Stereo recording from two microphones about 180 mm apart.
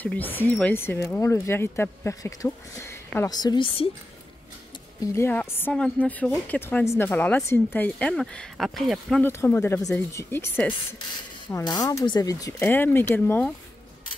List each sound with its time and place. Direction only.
0.0 s a woman's voice: 10° left (ahead or behind); by 3.9 s 30° left (ahead or behind)
5.0 s a woman's voice: 15° left (ahead or behind)
9.2 s a woman's voice: 15° left (ahead or behind)